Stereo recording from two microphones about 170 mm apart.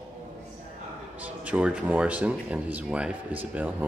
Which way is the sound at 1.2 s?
10° right (ahead or behind).